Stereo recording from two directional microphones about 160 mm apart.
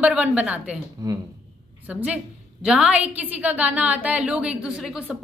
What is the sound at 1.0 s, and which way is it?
Speech, 25° right (ahead or behind).